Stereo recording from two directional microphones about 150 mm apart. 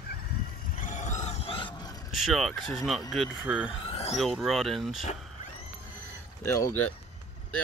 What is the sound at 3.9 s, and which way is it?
Vehicle, 40° left (ahead or behind).